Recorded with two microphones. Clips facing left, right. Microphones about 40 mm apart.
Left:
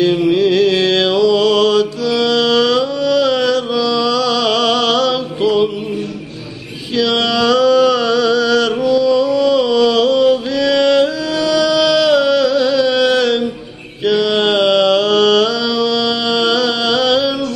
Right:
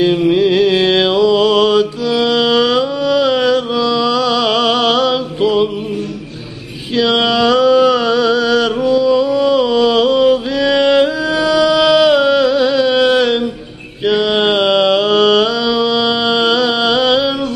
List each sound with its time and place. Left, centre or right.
0.0 s music: centre
7.0 s a sound: centre
14.0 s mantra: centre